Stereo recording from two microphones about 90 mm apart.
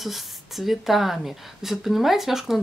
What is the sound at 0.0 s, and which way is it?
Speech, centre (ahead or behind).